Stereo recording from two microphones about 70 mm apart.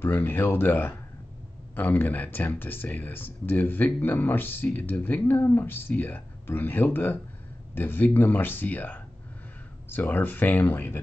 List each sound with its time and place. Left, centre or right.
0.0 s speech: left